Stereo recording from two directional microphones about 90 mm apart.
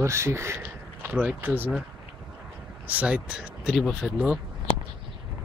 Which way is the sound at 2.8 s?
15° right (ahead or behind).